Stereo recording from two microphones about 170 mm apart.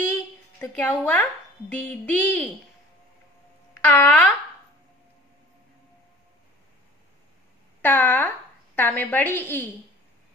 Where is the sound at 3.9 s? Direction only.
10° left (ahead or behind).